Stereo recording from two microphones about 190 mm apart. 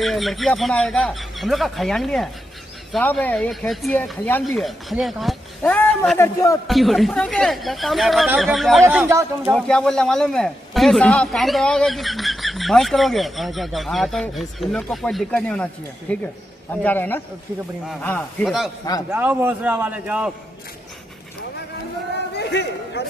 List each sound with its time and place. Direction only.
0.0 s a man's voice: centre (ahead or behind)
6.7 s a man's voice: centre (ahead or behind)
8.8 s speech: 15° right (ahead or behind)
9.5 s a man's voice: 5° left (ahead or behind)
19.0 s speech: 10° right (ahead or behind)
22.4 s a sound: 60° left (ahead or behind)